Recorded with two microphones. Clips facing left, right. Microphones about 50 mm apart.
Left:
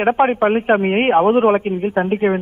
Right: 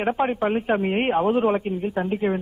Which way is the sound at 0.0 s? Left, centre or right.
Left.